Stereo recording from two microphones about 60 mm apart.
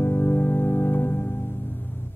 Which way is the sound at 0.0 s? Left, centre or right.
Left.